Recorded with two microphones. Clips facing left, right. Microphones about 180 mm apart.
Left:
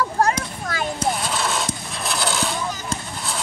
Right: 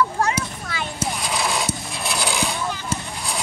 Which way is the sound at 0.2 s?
45° left (ahead or behind).